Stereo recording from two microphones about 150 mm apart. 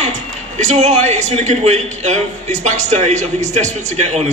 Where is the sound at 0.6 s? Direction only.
50° right (ahead or behind).